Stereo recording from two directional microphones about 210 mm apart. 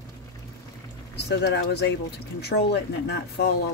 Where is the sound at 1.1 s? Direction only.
55° left (ahead or behind).